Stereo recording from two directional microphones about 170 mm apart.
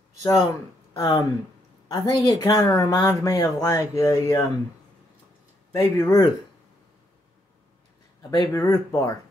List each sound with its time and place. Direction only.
0.2 s speech: 20° left (ahead or behind)
5.7 s speech: 15° left (ahead or behind)
8.2 s speech: 20° left (ahead or behind)